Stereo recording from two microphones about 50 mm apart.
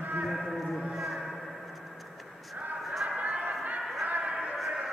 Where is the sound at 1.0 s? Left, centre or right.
Centre.